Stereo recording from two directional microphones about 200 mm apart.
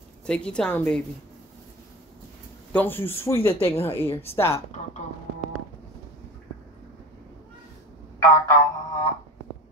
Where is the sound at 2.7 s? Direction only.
10° left (ahead or behind).